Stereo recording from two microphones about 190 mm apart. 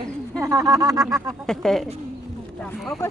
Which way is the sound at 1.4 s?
5° left (ahead or behind).